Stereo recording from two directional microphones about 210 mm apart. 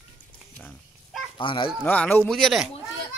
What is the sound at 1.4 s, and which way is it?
Speech, 25° left (ahead or behind).